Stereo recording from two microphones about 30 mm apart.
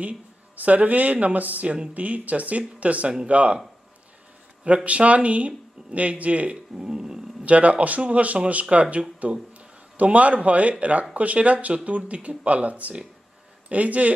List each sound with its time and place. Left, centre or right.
0.6 s speech: right
4.8 s speech: right
6.5 s speech: right
7.4 s speech: right
8.7 s speech: right
9.2 s speech: right